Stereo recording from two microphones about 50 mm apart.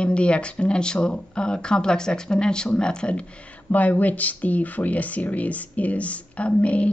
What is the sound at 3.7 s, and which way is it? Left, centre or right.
Speech, left.